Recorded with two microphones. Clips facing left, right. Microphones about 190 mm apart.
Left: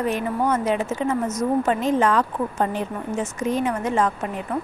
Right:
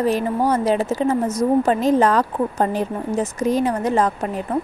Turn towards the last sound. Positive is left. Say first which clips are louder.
# right 3 dB
turn(degrees=-35)  # may be behind; listen again after turning